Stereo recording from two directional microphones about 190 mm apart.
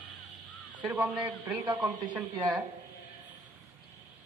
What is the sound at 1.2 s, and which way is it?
A man's voice, 25° right (ahead or behind).